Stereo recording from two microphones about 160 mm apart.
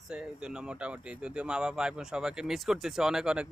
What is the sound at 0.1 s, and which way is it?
Speech, 5° right (ahead or behind).